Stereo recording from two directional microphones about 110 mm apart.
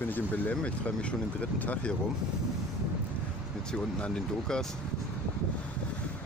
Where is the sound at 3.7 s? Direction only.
10° left (ahead or behind).